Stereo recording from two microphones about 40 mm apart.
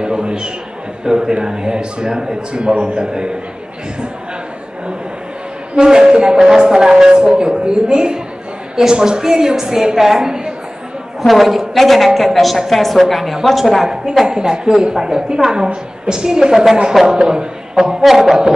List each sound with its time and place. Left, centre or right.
0.0 s a man's voice: right
5.8 s a woman's voice: centre
11.2 s a woman's voice: centre